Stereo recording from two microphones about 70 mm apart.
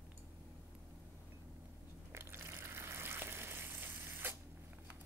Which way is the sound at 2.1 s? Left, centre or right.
Right.